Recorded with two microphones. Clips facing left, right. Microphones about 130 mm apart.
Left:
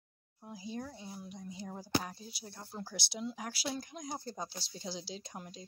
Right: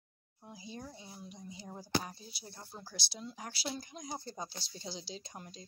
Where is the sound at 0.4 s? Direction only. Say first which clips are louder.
Left 5 dB; centre (ahead or behind).